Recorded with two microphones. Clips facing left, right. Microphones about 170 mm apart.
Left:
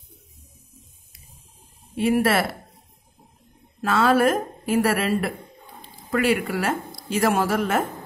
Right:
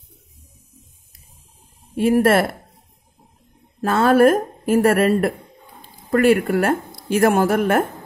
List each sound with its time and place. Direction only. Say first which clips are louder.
2.0 s a woman's voice: right 5 dB; 50° right (ahead or behind)
3.8 s a woman's voice: right 5 dB; 50° right (ahead or behind)